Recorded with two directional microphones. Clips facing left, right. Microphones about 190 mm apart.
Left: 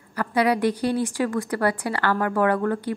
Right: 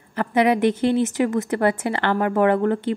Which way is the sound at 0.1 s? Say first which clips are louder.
Right 3 dB; 20° right (ahead or behind).